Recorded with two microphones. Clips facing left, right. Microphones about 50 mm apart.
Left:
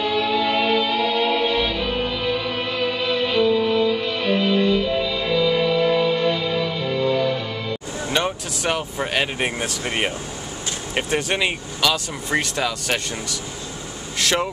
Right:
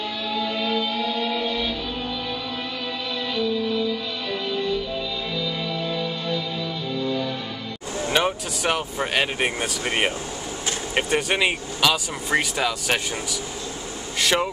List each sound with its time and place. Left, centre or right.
0.0 s music: left
8.1 s speech: centre